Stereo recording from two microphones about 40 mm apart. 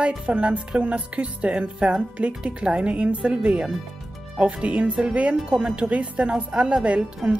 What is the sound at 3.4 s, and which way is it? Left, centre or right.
Speech, centre.